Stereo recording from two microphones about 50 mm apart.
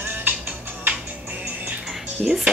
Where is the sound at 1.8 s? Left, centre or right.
Centre.